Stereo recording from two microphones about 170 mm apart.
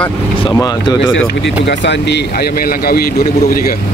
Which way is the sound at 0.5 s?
25° left (ahead or behind).